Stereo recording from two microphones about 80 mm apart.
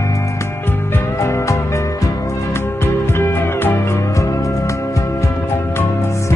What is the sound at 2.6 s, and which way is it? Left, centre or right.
Music, left.